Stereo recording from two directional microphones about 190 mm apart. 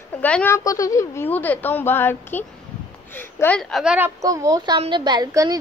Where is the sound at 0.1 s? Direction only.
10° left (ahead or behind).